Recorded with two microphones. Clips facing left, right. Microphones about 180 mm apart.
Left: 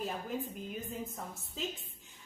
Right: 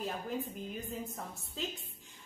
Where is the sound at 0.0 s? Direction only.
Centre (ahead or behind).